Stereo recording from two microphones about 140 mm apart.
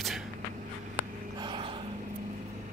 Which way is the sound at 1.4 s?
35° right (ahead or behind).